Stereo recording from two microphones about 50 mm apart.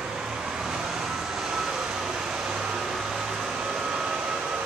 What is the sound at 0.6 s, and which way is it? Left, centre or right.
Vehicle, centre.